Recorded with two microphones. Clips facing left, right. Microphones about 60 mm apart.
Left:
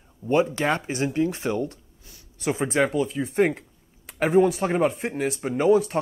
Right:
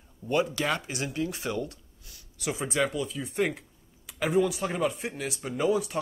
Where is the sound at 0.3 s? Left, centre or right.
Left.